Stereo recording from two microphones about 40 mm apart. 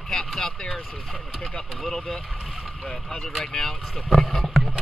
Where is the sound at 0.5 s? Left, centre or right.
Centre.